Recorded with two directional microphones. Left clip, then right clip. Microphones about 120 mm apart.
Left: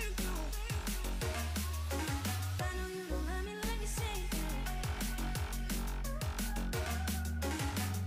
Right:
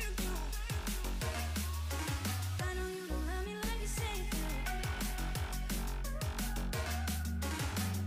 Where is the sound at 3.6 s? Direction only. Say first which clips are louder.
Even; centre (ahead or behind).